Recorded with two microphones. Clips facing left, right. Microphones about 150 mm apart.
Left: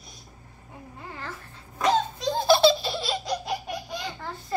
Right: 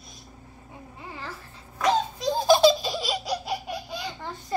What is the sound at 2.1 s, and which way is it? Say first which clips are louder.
Laughter: right 1 dB; 15° right (ahead or behind).